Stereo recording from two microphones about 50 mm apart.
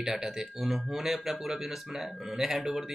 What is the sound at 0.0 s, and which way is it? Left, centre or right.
Speech, centre.